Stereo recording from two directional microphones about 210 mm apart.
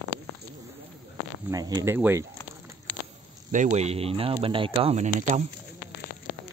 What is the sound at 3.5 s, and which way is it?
Speech, 30° right (ahead or behind).